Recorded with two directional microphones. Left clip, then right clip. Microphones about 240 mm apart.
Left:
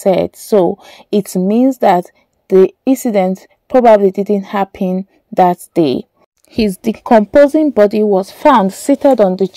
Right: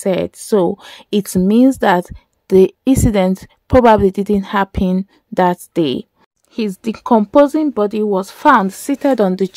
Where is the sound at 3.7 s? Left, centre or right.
Right.